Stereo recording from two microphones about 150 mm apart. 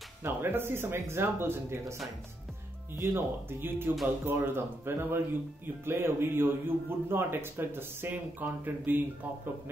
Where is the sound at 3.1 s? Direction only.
15° right (ahead or behind).